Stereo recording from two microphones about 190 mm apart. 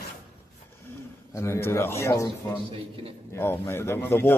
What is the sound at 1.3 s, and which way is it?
Speech, 15° left (ahead or behind).